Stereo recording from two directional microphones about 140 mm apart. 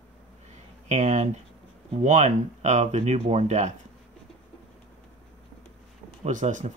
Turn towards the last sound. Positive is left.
turn(degrees=-60)  # may be behind; listen again after turning